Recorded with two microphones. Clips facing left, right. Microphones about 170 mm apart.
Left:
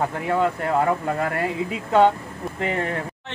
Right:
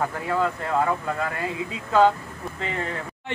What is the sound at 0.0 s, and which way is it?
Speech, 20° left (ahead or behind).